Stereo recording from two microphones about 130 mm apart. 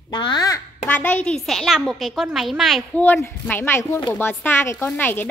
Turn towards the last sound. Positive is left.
turn(degrees=15)  # may be behind; listen again after turning